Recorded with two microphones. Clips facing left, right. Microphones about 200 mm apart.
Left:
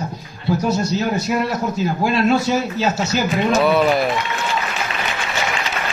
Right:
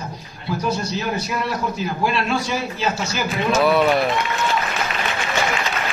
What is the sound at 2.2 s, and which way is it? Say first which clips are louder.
Speech: left 6 dB; 40° left (ahead or behind).